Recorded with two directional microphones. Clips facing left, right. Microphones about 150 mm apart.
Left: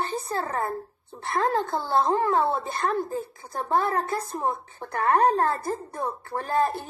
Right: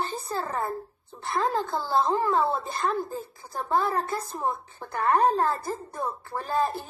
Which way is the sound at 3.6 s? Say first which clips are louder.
Left 1 dB; centre (ahead or behind).